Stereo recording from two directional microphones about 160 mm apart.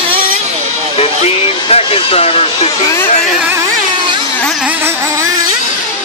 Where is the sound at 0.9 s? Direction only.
40° left (ahead or behind).